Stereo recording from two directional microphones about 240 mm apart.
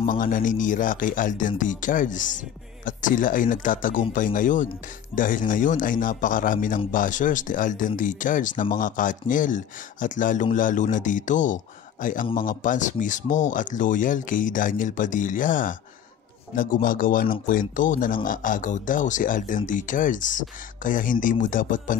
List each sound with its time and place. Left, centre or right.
0.0 s speech: left